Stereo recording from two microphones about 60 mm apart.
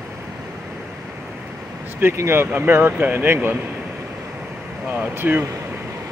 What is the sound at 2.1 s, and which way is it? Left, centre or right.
Speech, right.